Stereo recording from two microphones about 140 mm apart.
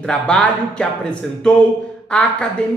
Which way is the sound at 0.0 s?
5° left (ahead or behind).